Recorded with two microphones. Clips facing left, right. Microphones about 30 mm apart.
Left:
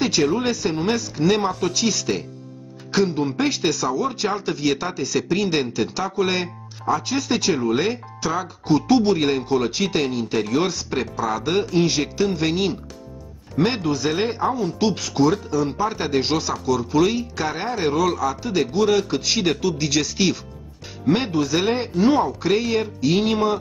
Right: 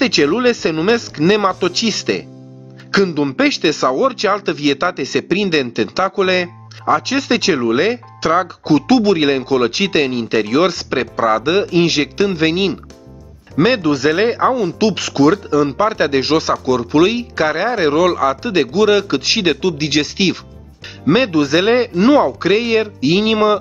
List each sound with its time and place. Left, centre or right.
0.0 s speech: right
9.2 s speech: right
11.7 s speech: right
13.6 s speech: right
15.5 s speech: right
19.6 s speech: right
21.1 s speech: right